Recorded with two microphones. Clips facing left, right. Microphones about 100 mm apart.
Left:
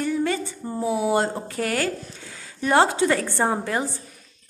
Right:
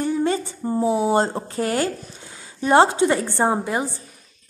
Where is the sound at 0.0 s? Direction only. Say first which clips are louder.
Right 2 dB; 30° right (ahead or behind).